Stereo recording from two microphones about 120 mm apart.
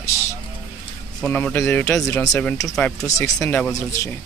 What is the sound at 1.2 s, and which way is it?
Speech, 10° left (ahead or behind).